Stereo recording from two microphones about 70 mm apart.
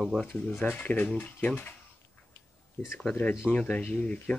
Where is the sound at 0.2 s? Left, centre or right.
Centre.